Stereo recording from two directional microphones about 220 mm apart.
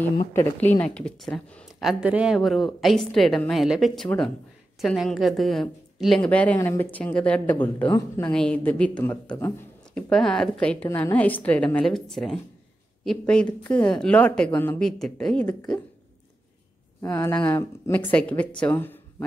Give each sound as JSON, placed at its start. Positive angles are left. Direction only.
{"t": 0.3, "sound": "speech", "side_deg": 10}
{"t": 8.3, "sound": "speech", "side_deg": 5}
{"t": 17.0, "sound": "speech", "side_deg": 15}